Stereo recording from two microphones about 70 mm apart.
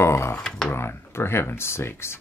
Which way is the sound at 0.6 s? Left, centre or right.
Left.